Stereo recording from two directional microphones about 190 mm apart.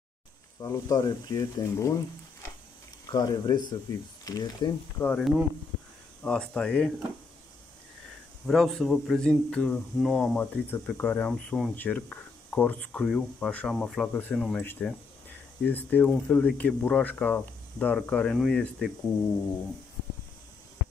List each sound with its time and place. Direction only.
0.6 s speech: 20° left (ahead or behind)
3.1 s speech: 20° left (ahead or behind)
5.0 s speech: 5° left (ahead or behind)
8.5 s speech: centre (ahead or behind)